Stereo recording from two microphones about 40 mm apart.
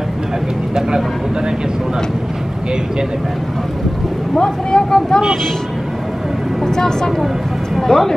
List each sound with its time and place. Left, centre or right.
4.4 s speech: centre
6.6 s speech: centre